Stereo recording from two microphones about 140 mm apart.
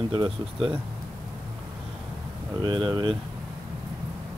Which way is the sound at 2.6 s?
35° right (ahead or behind).